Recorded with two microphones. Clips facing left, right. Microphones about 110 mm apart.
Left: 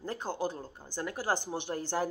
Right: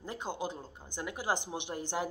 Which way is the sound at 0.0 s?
15° right (ahead or behind).